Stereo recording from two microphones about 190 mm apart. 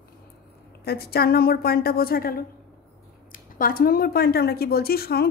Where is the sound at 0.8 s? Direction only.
55° left (ahead or behind).